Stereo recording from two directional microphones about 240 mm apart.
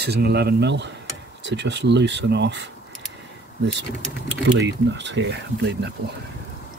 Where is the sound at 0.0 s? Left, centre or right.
Right.